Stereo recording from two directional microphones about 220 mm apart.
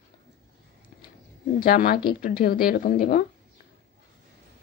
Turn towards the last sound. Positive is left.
turn(degrees=40)  # may be behind; listen again after turning